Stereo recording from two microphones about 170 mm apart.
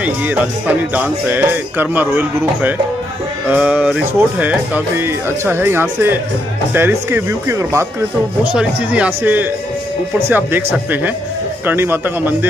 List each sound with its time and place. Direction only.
0.0 s speech: 10° right (ahead or behind)